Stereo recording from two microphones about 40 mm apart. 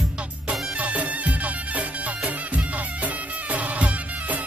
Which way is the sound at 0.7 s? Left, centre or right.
Right.